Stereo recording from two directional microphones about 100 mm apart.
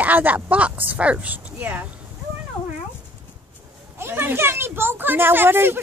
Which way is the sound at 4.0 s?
20° right (ahead or behind).